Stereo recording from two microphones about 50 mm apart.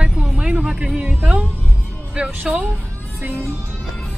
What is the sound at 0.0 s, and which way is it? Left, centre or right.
Music, centre.